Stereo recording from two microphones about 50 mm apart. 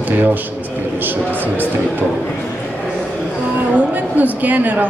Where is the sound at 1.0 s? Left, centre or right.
Right.